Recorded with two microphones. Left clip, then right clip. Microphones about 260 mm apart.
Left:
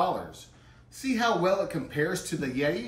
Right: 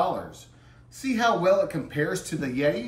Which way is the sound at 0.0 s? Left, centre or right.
Centre.